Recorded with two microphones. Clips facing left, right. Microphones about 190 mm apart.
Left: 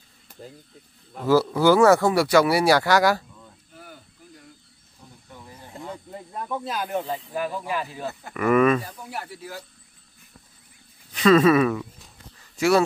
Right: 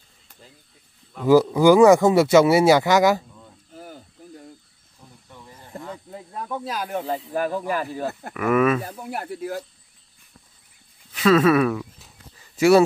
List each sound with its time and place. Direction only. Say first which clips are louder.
1.2 s speech: right 4 dB; 15° right (ahead or behind)
3.7 s a sound: right 6 dB; 40° right (ahead or behind)
5.3 s snake: right 2 dB; 5° left (ahead or behind)
7.1 s speech: right 4 dB; 45° right (ahead or behind)
8.3 s speech: left 1 dB; centre (ahead or behind)
8.8 s speech: right 4 dB; 55° right (ahead or behind)
11.1 s a sound: even; 5° right (ahead or behind)